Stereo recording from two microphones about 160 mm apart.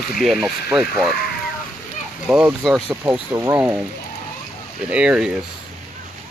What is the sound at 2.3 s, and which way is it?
Speech, 5° right (ahead or behind).